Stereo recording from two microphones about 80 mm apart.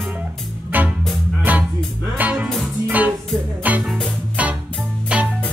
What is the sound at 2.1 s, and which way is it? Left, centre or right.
Music, centre.